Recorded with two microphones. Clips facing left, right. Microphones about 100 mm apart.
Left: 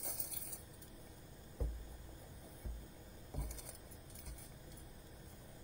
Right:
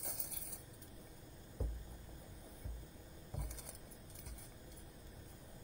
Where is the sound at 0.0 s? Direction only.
65° right (ahead or behind).